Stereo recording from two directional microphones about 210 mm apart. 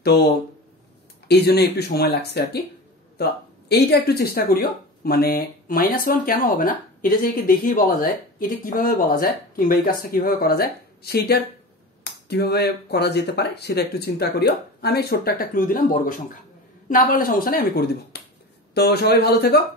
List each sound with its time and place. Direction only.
0.0 s speech: 50° left (ahead or behind)